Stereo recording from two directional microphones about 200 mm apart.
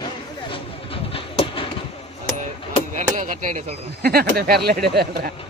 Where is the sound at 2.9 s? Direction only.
40° right (ahead or behind).